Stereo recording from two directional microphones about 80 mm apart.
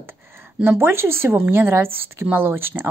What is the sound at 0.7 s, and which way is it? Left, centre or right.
A woman's voice, right.